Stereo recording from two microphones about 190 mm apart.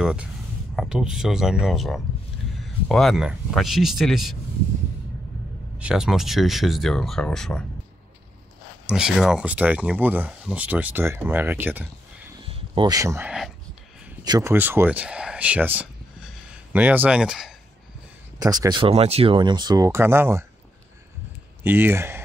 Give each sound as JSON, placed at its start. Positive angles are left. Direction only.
{"t": 0.0, "sound": "speech", "side_deg": -5}
{"t": 5.8, "sound": "speech", "side_deg": -5}
{"t": 8.8, "sound": "speech", "side_deg": -5}
{"t": 12.4, "sound": "speech", "side_deg": -30}
{"t": 18.4, "sound": "speech", "side_deg": -20}
{"t": 21.6, "sound": "speech", "side_deg": -10}